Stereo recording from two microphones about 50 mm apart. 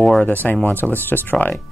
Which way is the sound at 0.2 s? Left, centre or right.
Left.